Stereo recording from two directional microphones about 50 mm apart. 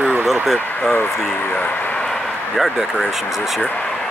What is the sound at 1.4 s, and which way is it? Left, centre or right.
Speech, left.